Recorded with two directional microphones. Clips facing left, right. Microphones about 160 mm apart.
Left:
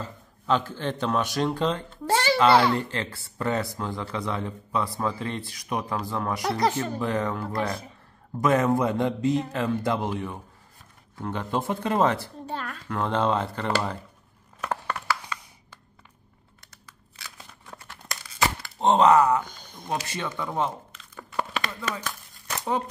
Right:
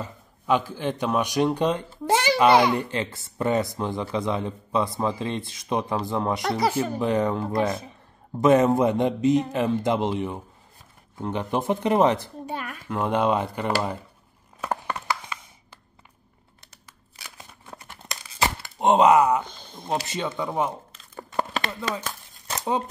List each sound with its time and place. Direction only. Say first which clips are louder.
0.0 s speech: right 1 dB; 10° right (ahead or behind)
6.5 s speech: even; 5° right (ahead or behind)
14.6 s a sound: right 1 dB; 15° right (ahead or behind)
17.2 s crumpling: right 1 dB; 20° right (ahead or behind)
20.1 s speech: right 3 dB; 20° right (ahead or behind)
20.9 s crumpling: right 3 dB; 35° right (ahead or behind)